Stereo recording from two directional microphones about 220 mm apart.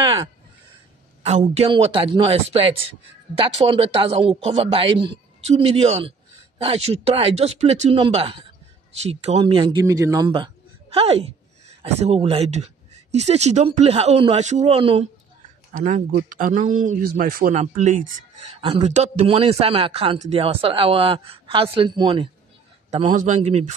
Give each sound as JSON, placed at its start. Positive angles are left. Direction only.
{"t": 0.0, "sound": "crow", "side_deg": -20}
{"t": 1.2, "sound": "a man's voice", "side_deg": -30}